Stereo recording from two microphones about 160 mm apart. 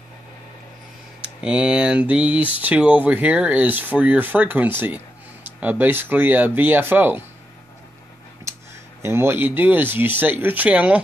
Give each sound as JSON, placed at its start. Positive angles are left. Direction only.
{"t": 1.2, "sound": "speech", "side_deg": -5}
{"t": 8.5, "sound": "a sound", "side_deg": -20}
{"t": 9.0, "sound": "speech", "side_deg": -15}